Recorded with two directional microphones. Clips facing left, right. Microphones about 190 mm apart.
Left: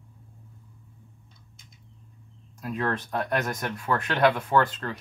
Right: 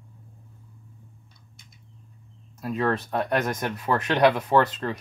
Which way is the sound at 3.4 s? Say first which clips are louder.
Right 3 dB; 20° right (ahead or behind).